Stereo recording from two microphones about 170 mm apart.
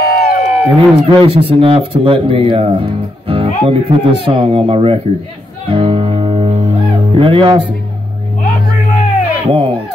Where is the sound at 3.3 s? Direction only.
35° right (ahead or behind).